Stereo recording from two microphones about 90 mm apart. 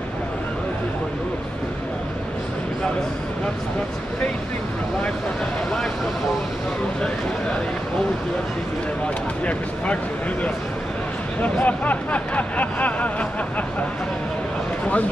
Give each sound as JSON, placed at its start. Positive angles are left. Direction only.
{"t": 11.6, "sound": "speech", "side_deg": 15}